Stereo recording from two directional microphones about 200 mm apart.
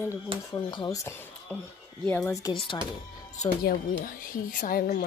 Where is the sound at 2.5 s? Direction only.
25° left (ahead or behind).